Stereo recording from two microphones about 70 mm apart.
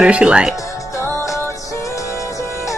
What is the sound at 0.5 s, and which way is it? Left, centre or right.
Music, left.